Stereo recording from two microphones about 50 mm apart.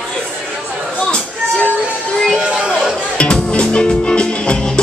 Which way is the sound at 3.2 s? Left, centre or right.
Left.